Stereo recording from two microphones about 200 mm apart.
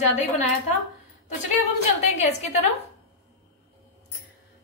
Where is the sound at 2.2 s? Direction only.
30° left (ahead or behind).